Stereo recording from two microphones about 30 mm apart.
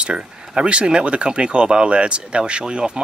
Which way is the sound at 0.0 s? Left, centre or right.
Right.